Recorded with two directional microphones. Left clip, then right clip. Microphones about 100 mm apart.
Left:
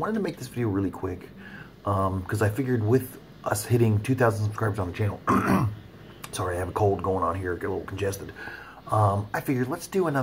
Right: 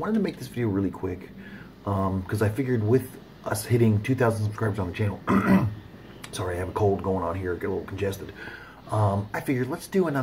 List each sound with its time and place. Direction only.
0.0 s speech: 15° left (ahead or behind)